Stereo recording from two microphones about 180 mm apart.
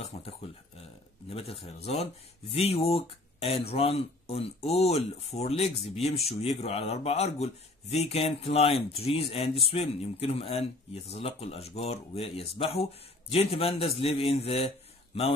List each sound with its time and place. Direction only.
0.1 s speech: 30° left (ahead or behind)
1.3 s speech: 35° left (ahead or behind)